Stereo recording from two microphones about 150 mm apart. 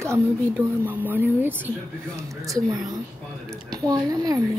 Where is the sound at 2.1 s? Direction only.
20° right (ahead or behind).